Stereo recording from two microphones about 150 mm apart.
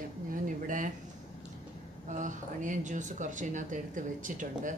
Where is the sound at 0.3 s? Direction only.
60° right (ahead or behind).